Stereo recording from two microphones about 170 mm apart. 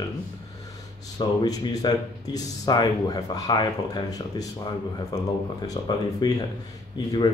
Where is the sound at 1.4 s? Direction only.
20° left (ahead or behind).